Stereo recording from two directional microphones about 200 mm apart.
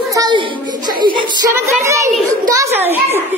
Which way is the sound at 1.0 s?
25° right (ahead or behind).